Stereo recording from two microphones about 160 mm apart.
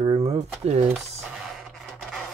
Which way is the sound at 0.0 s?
40° right (ahead or behind).